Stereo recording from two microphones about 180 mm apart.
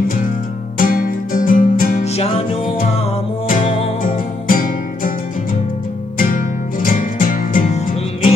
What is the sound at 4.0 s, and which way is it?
Music, 50° left (ahead or behind).